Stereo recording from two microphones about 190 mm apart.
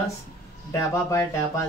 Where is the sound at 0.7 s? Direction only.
15° left (ahead or behind).